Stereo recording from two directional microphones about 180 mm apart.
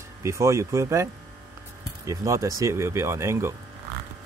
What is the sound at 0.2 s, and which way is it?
Speech, 15° right (ahead or behind).